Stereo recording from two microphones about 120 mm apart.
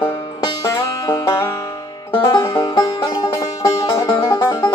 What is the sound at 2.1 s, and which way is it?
Music, 45° left (ahead or behind).